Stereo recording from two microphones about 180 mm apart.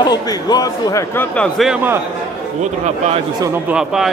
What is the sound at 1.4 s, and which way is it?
Speech, centre (ahead or behind).